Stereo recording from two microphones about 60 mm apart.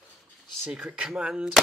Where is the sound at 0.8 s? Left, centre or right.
Centre.